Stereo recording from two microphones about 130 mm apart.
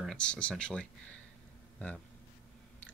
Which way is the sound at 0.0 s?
5° left (ahead or behind).